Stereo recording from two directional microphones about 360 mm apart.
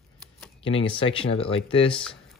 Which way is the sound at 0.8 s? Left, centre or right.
Centre.